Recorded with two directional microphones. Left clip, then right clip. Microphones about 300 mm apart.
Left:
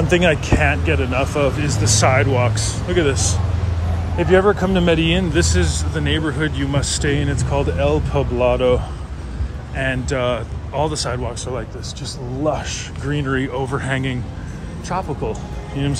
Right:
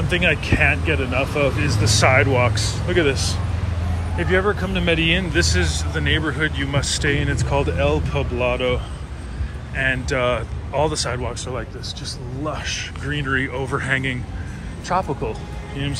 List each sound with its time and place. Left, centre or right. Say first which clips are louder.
0.1 s speech: left 2 dB; centre